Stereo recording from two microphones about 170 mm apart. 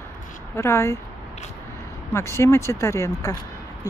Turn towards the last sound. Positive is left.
turn(degrees=20)  # may be behind; listen again after turning